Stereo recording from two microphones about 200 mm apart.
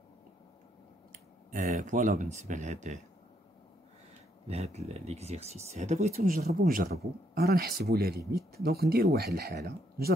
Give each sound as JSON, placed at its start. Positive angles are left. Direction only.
{"t": 1.1, "sound": "speech", "side_deg": -40}
{"t": 4.5, "sound": "speech", "side_deg": -30}